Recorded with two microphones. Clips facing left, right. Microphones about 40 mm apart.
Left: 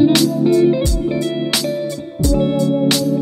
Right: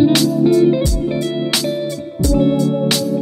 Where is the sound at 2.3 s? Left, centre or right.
Centre.